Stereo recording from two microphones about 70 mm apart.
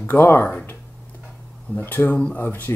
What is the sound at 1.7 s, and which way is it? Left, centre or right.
Speech, left.